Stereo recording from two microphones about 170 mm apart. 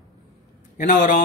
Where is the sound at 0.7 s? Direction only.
50° left (ahead or behind).